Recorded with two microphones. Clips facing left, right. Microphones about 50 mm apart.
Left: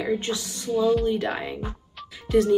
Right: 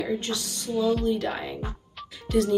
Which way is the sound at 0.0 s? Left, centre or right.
Left.